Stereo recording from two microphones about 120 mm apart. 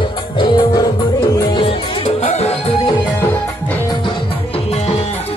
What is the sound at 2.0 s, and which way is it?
Music, 60° left (ahead or behind).